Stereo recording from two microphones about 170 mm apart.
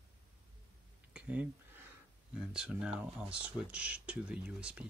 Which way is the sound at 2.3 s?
5° right (ahead or behind).